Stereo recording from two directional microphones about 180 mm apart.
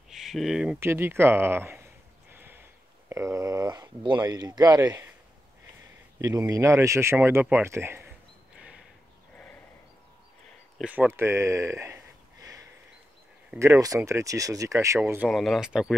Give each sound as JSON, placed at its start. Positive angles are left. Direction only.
{"t": 0.1, "sound": "speech", "side_deg": 0}
{"t": 2.3, "sound": "a sound", "side_deg": -10}
{"t": 3.1, "sound": "speech", "side_deg": -15}
{"t": 6.2, "sound": "speech", "side_deg": -15}
{"t": 8.5, "sound": "a sound", "side_deg": -5}
{"t": 10.8, "sound": "speech", "side_deg": -10}
{"t": 13.5, "sound": "speech", "side_deg": -15}